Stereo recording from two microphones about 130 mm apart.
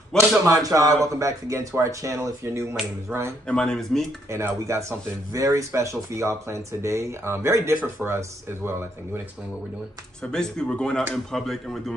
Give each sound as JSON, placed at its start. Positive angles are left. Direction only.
{"t": 0.1, "sound": "a sound", "side_deg": 5}
{"t": 0.5, "sound": "speech", "side_deg": -25}
{"t": 3.4, "sound": "speech", "side_deg": 5}
{"t": 4.3, "sound": "speech", "side_deg": -20}
{"t": 10.2, "sound": "speech", "side_deg": 5}